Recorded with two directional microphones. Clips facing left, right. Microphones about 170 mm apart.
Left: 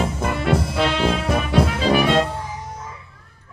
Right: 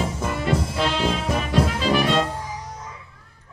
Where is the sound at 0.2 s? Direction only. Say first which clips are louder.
Left 3 dB; 65° left (ahead or behind).